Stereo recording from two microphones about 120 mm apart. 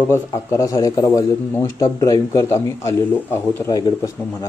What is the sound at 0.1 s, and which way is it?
A man's voice, 25° left (ahead or behind).